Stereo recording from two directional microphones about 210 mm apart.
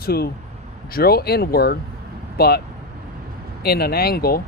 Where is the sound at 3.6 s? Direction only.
50° left (ahead or behind).